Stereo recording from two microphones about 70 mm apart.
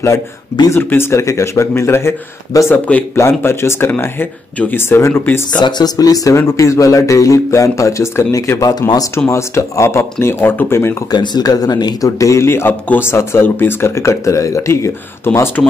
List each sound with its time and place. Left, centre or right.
0.7 s speech: left
2.7 s speech: left
3.2 s speech: left
5.6 s speech: left
6.4 s speech: left
8.5 s speech: left
8.8 s speech: left
10.2 s speech: left
11.1 s speech: left